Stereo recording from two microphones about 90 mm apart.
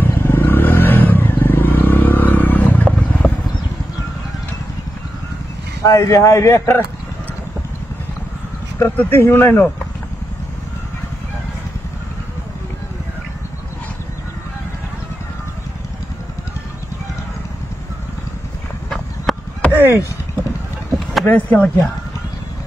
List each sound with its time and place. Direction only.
0.0 s vehicle: 25° left (ahead or behind)
5.8 s a man's voice: 35° left (ahead or behind)
8.7 s speech: 25° left (ahead or behind)
18.9 s a sound: 5° left (ahead or behind)
19.8 s chop: 25° right (ahead or behind)
21.3 s speech: 20° left (ahead or behind)